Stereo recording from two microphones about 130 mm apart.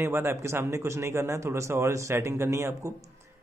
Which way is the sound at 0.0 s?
20° right (ahead or behind).